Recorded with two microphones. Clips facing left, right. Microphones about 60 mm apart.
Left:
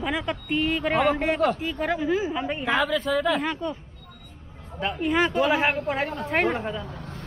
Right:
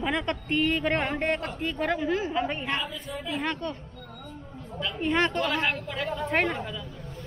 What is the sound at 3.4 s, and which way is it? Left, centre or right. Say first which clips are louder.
Speech: left 2 dB; centre.